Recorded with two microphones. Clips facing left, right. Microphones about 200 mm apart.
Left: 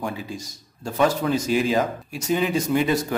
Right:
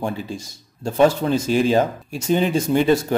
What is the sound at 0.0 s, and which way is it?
Speech, 30° right (ahead or behind).